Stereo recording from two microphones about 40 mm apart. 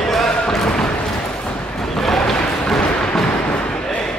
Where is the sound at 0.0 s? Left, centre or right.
Centre.